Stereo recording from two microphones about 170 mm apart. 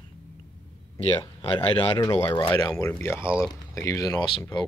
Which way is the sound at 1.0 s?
30° left (ahead or behind).